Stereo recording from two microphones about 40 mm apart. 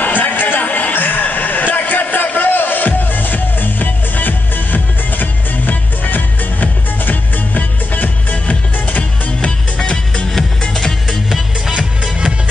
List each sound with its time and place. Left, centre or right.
0.0 s a sound: left
9.4 s music: left
10.7 s music: centre
11.1 s music: centre
11.7 s music: right